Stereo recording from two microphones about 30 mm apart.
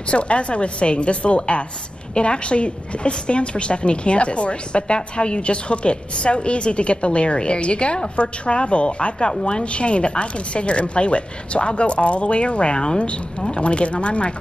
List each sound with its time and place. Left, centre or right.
0.1 s a woman's voice: left
13.6 s a woman's voice: left